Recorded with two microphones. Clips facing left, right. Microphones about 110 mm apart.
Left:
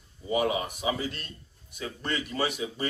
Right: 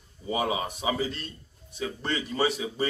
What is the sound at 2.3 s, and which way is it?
Speech, 30° right (ahead or behind).